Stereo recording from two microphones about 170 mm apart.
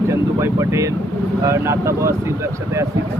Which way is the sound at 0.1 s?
15° right (ahead or behind).